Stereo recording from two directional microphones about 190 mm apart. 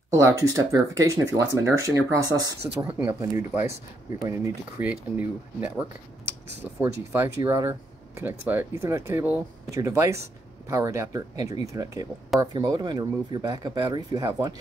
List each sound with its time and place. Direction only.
0.1 s speech: 15° right (ahead or behind)
6.8 s speech: 10° right (ahead or behind)